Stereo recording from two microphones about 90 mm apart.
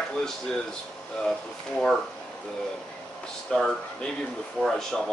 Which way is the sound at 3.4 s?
10° left (ahead or behind).